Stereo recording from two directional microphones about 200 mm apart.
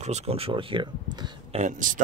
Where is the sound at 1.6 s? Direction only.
40° right (ahead or behind).